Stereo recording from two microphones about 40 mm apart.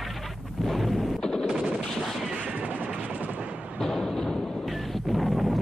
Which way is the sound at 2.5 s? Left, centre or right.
Right.